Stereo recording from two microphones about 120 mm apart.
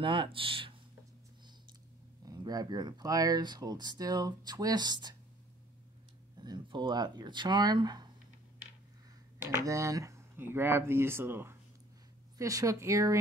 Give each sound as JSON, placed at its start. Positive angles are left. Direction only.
{"t": 0.0, "sound": "speech", "side_deg": -45}
{"t": 2.2, "sound": "speech", "side_deg": -30}
{"t": 6.3, "sound": "speech", "side_deg": -35}
{"t": 9.4, "sound": "speech", "side_deg": -25}